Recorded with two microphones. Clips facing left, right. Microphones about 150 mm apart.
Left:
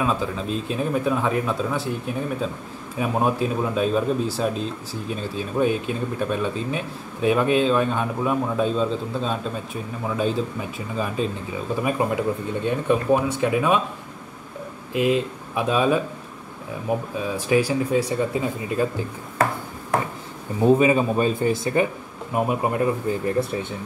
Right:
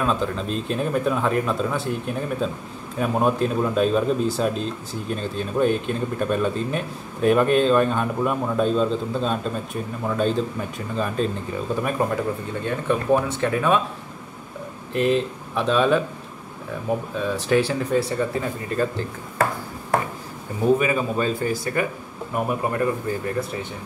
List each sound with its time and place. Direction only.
0.0 s speech: 5° left (ahead or behind)
14.9 s speech: 10° left (ahead or behind)
17.2 s speech: 10° left (ahead or behind)
20.6 s speech: 25° left (ahead or behind)